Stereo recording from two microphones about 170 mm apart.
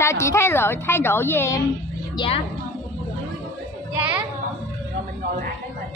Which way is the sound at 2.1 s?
35° left (ahead or behind).